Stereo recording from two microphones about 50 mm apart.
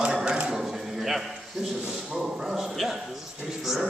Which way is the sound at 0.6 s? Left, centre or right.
Centre.